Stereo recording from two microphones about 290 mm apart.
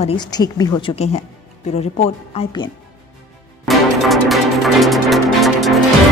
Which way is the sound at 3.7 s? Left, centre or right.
Centre.